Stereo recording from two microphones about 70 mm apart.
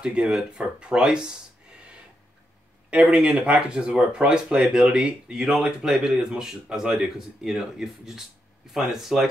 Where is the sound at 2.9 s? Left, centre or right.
Centre.